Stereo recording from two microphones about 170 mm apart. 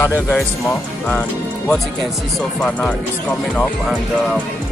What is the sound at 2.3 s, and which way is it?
Speech, 5° left (ahead or behind).